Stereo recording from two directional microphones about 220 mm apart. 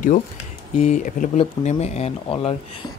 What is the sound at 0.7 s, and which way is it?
Speech, 30° left (ahead or behind).